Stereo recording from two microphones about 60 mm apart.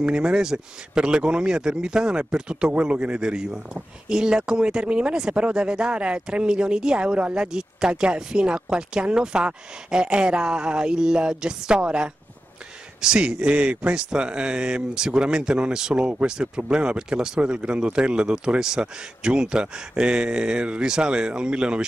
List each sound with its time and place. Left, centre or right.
0.0 s speech: centre